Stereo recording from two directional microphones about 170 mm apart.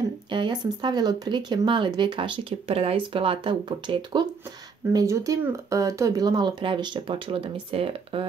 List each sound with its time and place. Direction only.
0.3 s speech: 30° right (ahead or behind)